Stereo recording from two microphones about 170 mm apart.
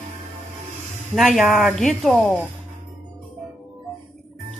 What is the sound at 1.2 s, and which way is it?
Speech, centre (ahead or behind).